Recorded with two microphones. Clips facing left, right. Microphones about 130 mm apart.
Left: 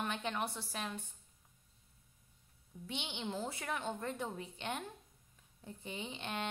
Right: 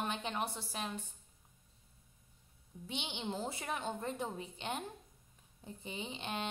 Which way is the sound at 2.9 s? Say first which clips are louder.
Right 1 dB; 25° right (ahead or behind).